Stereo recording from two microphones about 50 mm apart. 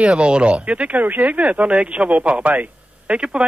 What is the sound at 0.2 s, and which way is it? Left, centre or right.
Speech, right.